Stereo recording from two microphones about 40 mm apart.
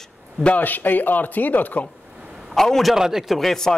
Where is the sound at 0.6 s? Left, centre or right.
Left.